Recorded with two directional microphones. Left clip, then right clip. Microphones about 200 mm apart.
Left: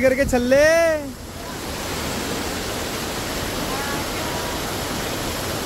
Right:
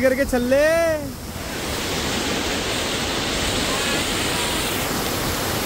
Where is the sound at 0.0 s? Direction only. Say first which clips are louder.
Left 1 dB; 5° left (ahead or behind).